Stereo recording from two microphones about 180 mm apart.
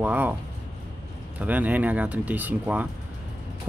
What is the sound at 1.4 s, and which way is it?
Speech, 10° right (ahead or behind).